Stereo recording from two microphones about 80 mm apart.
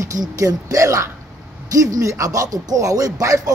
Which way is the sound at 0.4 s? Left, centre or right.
Right.